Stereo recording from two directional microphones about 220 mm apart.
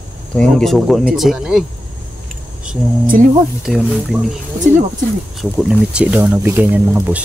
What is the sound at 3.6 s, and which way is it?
Speech, centre (ahead or behind).